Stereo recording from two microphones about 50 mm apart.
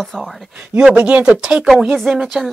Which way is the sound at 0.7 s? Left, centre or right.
Right.